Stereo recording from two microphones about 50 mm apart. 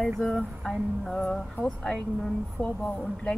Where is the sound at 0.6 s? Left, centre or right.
Centre.